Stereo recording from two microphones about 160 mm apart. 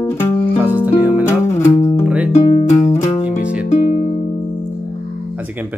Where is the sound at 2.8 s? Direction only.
45° left (ahead or behind).